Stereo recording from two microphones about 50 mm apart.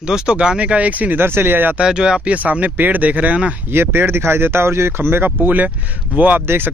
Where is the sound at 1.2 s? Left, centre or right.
Right.